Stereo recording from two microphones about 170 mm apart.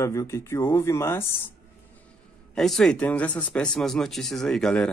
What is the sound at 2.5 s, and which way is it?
Speech, centre (ahead or behind).